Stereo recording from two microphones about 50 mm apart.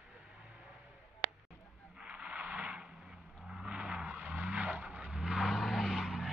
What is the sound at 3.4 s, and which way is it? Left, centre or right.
Vehicle, centre.